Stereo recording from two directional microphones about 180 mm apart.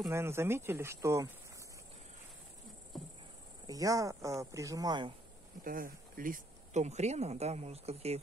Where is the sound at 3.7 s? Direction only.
20° right (ahead or behind).